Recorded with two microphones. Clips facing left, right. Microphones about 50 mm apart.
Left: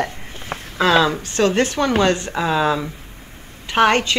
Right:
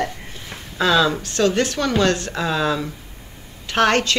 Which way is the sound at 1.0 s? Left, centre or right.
Left.